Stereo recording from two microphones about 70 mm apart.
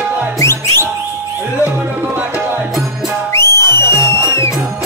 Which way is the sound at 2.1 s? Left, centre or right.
Right.